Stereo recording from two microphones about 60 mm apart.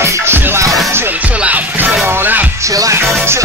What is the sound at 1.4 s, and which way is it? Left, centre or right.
Music, right.